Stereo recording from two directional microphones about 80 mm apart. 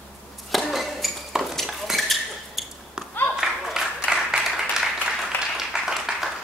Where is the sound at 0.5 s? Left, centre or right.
Centre.